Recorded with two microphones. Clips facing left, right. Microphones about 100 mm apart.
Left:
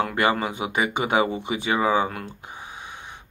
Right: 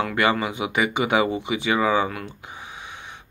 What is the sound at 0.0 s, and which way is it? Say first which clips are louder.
Speech: even; 40° left (ahead or behind).